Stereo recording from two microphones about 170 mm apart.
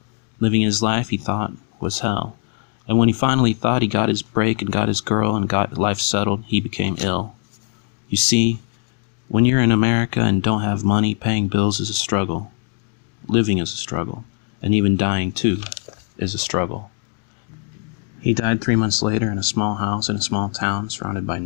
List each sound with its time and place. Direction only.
0.4 s speech: 30° left (ahead or behind)
18.2 s speech: 15° left (ahead or behind)